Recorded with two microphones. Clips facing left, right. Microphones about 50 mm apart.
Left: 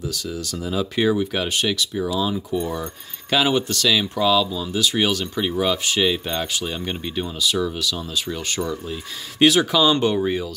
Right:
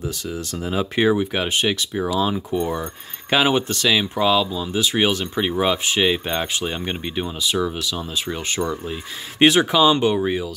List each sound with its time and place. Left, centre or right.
0.1 s speech: right
9.8 s speech: centre